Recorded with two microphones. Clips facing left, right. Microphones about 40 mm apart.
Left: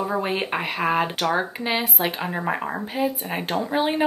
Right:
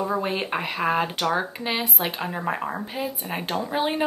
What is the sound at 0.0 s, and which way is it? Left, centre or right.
Speech, centre.